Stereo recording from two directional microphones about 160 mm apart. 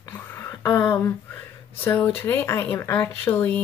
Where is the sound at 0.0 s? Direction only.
15° left (ahead or behind).